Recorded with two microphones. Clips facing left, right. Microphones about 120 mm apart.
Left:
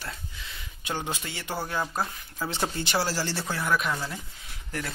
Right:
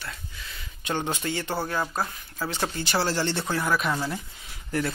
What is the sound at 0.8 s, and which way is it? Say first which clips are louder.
Speech: right 4 dB; 10° left (ahead or behind).